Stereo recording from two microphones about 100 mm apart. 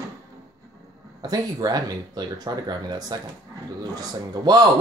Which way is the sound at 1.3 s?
40° right (ahead or behind).